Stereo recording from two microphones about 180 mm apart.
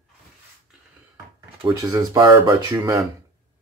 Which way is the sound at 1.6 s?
25° right (ahead or behind).